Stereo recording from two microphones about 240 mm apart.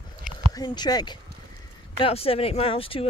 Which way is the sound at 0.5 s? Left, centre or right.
Centre.